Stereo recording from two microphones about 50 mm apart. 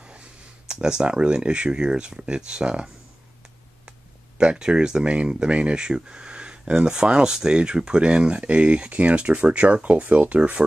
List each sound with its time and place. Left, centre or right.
0.7 s speech: centre
4.4 s speech: centre